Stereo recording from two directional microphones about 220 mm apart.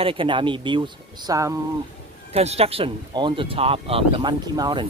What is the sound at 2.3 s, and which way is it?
Speech, 30° right (ahead or behind).